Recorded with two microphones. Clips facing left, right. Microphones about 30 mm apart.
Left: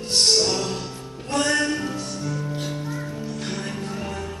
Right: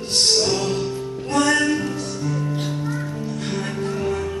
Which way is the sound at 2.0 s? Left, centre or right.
Centre.